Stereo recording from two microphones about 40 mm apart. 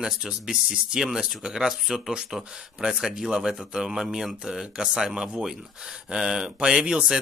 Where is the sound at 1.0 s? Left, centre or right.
Centre.